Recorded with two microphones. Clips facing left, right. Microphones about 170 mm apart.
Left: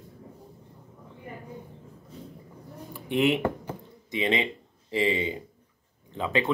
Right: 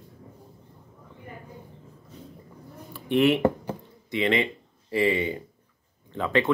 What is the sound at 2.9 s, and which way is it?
Speech, 15° left (ahead or behind).